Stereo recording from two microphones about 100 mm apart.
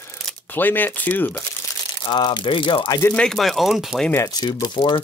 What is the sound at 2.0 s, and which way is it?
Speech, 50° left (ahead or behind).